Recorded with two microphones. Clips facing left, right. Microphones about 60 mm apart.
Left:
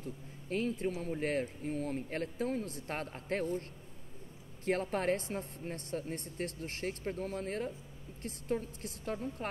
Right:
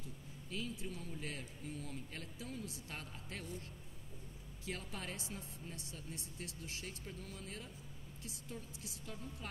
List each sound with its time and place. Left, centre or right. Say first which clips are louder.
0.0 s speech: left 7 dB; left
4.6 s speech: left 14 dB; left